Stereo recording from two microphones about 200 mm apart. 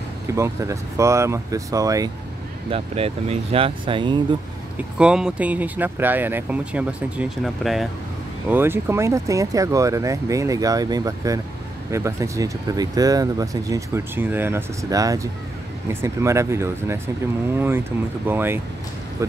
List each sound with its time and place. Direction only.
0.4 s speech: 15° right (ahead or behind)
2.7 s speech: 30° right (ahead or behind)
4.7 s speech: 5° right (ahead or behind)